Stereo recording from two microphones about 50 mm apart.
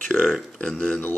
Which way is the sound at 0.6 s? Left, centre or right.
Left.